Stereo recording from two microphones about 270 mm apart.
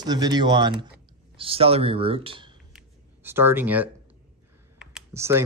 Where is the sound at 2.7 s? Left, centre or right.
Centre.